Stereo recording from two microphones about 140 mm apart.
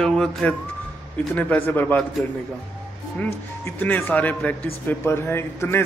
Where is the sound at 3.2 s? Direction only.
10° left (ahead or behind).